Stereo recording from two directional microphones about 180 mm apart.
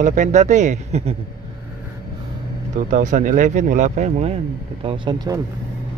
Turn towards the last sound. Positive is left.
turn(degrees=-25)  # may be behind; listen again after turning